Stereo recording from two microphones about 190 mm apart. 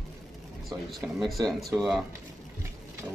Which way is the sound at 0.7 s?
Centre (ahead or behind).